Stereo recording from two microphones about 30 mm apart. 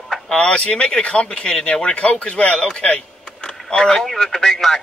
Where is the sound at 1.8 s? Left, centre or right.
Left.